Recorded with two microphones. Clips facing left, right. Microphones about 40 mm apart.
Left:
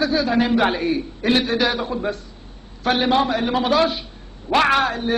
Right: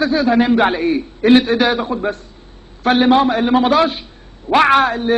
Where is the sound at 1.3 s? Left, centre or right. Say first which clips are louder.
Right 6 dB; right.